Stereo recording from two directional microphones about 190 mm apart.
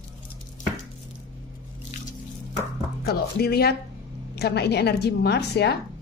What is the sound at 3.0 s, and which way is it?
A woman's voice, 55° left (ahead or behind).